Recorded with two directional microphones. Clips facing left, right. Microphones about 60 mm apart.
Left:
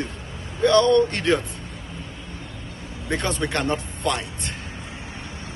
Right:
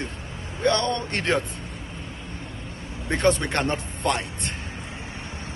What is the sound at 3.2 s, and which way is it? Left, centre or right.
Speech, right.